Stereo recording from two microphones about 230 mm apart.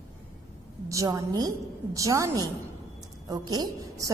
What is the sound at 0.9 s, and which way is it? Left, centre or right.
A woman's voice, centre.